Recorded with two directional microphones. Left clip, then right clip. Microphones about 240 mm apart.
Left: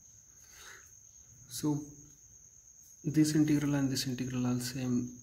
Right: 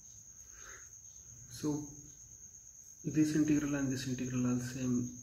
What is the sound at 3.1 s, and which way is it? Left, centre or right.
Speech, left.